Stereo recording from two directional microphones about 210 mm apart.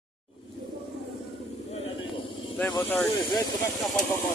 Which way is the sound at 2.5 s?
10° left (ahead or behind).